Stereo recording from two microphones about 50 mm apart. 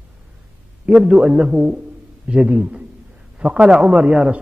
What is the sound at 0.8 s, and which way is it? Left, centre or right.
A man's voice, right.